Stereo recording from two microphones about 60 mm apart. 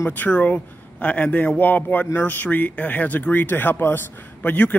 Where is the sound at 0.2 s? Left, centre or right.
Left.